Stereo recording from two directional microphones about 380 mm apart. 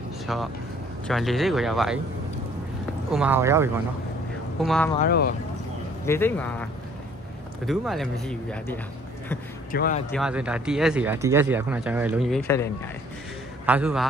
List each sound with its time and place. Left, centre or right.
0.3 s speech: centre
3.1 s speech: centre
5.0 s speech: left
6.0 s speech: centre
9.7 s speech: left
10.1 s speech: centre
13.7 s speech: centre